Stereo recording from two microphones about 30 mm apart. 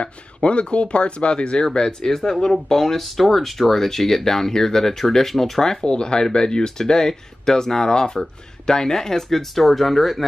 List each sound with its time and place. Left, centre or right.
0.0 s speech: left
2.5 s speech: centre
5.9 s speech: left
9.4 s speech: centre